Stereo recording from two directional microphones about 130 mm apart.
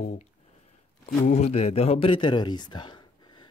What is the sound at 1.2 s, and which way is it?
Speech, 60° left (ahead or behind).